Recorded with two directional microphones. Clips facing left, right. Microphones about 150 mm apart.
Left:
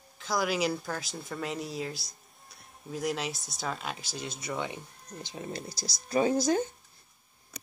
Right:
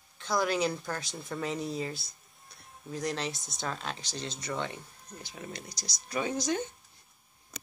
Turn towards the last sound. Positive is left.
turn(degrees=40)  # may be behind; listen again after turning